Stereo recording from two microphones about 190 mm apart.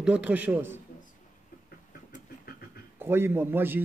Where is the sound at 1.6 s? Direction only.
55° left (ahead or behind).